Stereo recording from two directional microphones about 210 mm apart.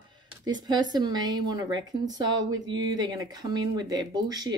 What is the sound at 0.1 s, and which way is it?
Speech, 20° right (ahead or behind).